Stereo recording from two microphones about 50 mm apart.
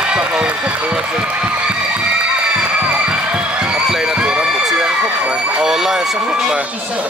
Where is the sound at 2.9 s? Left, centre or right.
Right.